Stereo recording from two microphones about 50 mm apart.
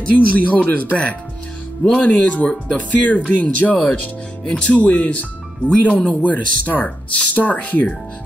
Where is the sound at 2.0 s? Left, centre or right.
Left.